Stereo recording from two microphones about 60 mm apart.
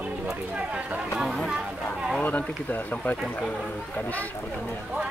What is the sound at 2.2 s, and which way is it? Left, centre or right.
Speech, left.